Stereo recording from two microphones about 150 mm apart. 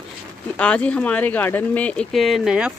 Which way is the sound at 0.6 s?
5° left (ahead or behind).